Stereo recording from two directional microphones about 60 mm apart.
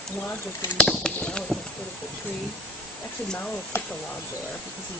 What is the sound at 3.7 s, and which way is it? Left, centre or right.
Speech, left.